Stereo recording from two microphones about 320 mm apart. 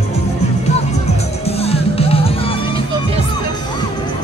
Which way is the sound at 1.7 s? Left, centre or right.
Centre.